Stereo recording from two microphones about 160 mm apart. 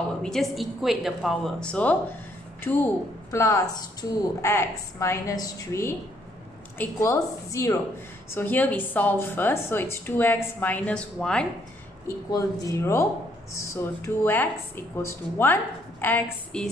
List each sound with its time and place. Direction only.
0.2 s a woman's voice: centre (ahead or behind)
12.3 s a woman's voice: 20° left (ahead or behind)